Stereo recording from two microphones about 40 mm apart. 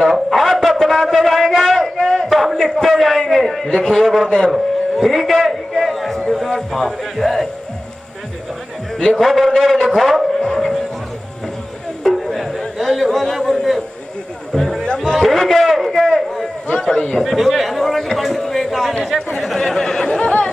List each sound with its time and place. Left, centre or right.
0.3 s a sound: centre
3.6 s a man's voice: centre
4.5 s a sound: centre
6.7 s a man's voice: centre
9.1 s a man's voice: centre
12.3 s music: centre
12.8 s a sound: centre
14.5 s music: centre
15.0 s a sound: centre
16.9 s a man's voice: left
17.2 s a man's voice: centre
20.1 s chatter: left